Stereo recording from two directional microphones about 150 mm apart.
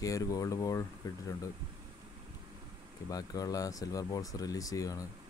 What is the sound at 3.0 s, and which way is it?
Speech, 25° left (ahead or behind).